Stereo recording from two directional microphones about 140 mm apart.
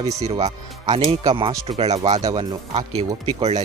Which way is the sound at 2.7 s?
45° right (ahead or behind).